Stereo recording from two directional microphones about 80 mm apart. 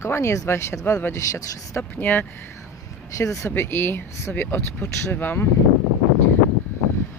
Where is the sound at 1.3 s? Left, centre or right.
Left.